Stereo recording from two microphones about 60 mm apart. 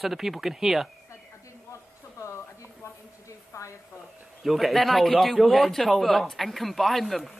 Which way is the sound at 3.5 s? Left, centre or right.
Left.